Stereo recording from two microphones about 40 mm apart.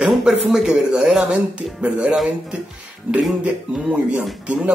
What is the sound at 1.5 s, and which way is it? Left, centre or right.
Speech, right.